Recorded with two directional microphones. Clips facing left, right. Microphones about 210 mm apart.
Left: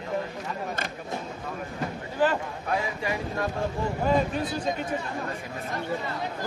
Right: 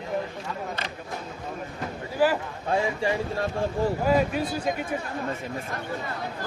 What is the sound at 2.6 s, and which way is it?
Speech, 30° right (ahead or behind).